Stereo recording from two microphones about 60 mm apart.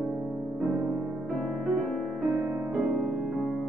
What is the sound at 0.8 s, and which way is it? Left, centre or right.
Music, right.